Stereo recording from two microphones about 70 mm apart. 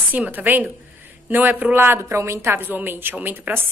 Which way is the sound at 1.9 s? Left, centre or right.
Right.